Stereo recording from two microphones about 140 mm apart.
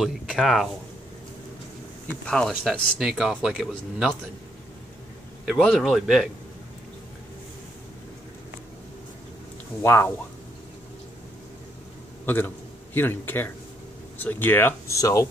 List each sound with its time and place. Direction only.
0.0 s speech: centre (ahead or behind)
2.2 s speech: 5° left (ahead or behind)
5.4 s speech: 5° right (ahead or behind)
9.8 s speech: 15° left (ahead or behind)
12.3 s a man's voice: 15° left (ahead or behind)